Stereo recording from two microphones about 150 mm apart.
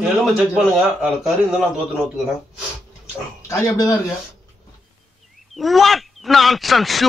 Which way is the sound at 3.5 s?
20° left (ahead or behind).